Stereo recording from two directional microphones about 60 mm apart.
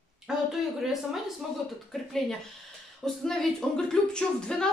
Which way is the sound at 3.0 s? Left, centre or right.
Centre.